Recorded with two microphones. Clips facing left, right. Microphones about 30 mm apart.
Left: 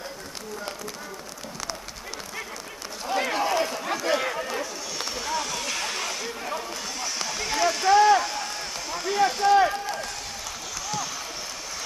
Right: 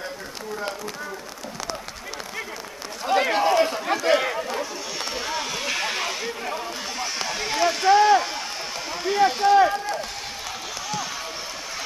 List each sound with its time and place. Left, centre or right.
3.1 s run: right
8.9 s speech: centre